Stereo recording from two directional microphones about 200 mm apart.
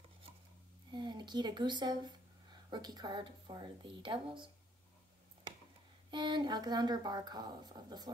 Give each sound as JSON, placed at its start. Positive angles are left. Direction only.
{"t": 0.9, "sound": "speech", "side_deg": -20}
{"t": 6.0, "sound": "speech", "side_deg": -25}